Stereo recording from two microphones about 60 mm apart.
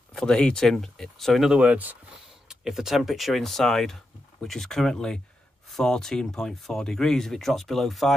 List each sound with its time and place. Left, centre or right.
0.1 s speech: centre
1.5 s speech: right
2.4 s speech: centre